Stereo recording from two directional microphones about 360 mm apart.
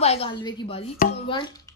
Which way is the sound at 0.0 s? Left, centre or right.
Centre.